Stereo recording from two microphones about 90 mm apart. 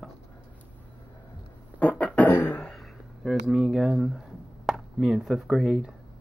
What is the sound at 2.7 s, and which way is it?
Speech, centre (ahead or behind).